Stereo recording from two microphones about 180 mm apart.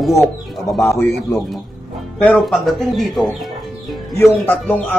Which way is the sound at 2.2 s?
5° left (ahead or behind).